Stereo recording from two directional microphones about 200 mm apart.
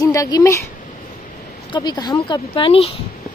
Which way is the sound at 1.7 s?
20° left (ahead or behind).